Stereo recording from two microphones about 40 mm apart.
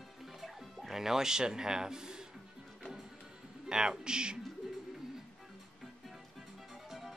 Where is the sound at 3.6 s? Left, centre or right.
Centre.